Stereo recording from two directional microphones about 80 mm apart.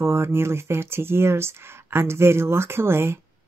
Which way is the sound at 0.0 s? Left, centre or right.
Right.